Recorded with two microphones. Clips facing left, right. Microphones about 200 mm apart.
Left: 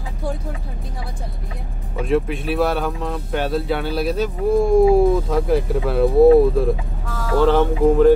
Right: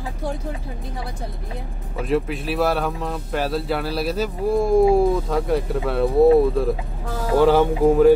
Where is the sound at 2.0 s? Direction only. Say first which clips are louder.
Left 2 dB; centre (ahead or behind).